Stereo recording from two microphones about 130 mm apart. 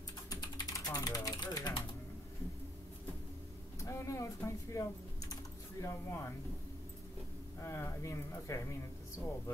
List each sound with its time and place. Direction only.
0.3 s typing: 30° left (ahead or behind)
3.8 s speech: 25° left (ahead or behind)
5.3 s typing: 25° left (ahead or behind)
7.6 s speech: 20° left (ahead or behind)